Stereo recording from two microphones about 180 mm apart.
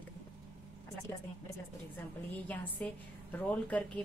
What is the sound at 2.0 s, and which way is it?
A woman's voice, 10° left (ahead or behind).